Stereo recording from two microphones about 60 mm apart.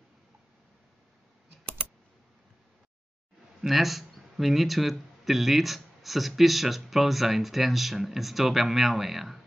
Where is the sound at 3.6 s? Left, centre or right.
Centre.